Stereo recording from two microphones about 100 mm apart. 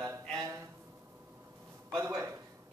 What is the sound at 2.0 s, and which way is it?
Speech, 25° right (ahead or behind).